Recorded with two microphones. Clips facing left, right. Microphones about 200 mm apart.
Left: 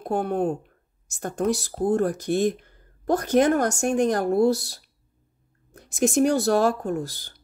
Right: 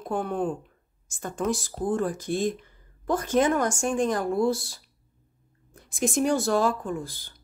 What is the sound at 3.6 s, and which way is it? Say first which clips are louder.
A woman's voice: left 3 dB; 65° left (ahead or behind).